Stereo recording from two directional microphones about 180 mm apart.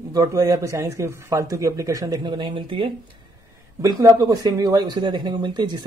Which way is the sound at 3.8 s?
20° right (ahead or behind).